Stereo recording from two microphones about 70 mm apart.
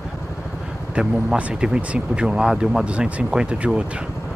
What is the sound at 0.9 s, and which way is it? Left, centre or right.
Speech, centre.